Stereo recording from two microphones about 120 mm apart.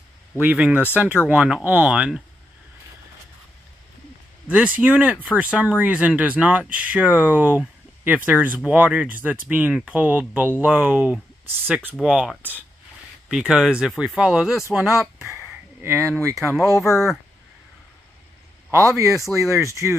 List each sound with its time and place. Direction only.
0.4 s speech: 10° right (ahead or behind)
4.5 s speech: 10° right (ahead or behind)
12.4 s speech: 15° right (ahead or behind)
15.8 s speech: 20° right (ahead or behind)
16.3 s speech: 5° right (ahead or behind)
18.7 s speech: 25° right (ahead or behind)